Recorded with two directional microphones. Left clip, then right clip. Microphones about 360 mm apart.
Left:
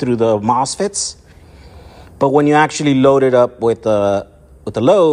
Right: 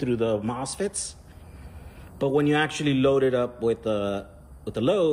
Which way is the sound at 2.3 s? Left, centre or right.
Centre.